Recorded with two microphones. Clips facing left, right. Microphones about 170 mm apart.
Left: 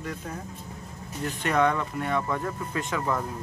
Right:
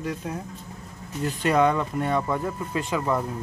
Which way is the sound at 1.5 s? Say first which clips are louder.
Right 2 dB; 15° right (ahead or behind).